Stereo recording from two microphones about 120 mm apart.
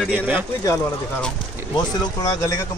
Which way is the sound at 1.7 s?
30° left (ahead or behind).